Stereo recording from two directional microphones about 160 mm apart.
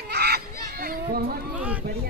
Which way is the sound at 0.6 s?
75° right (ahead or behind).